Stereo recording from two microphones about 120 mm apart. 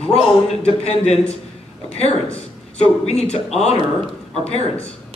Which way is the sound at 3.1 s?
60° left (ahead or behind).